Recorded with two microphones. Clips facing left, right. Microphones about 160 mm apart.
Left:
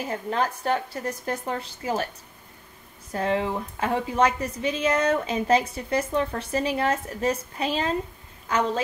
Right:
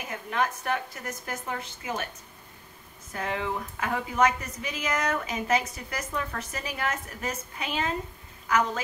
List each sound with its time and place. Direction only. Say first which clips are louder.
0.0 s speech: left 3 dB; 35° left (ahead or behind)
3.1 s a woman's voice: left 6 dB; 30° left (ahead or behind)